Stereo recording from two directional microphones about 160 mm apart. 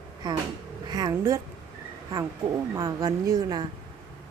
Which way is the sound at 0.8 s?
25° right (ahead or behind).